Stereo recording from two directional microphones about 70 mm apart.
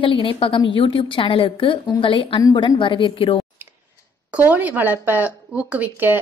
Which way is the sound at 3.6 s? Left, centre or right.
Right.